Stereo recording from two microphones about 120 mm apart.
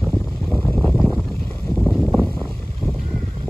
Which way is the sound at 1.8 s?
5° left (ahead or behind).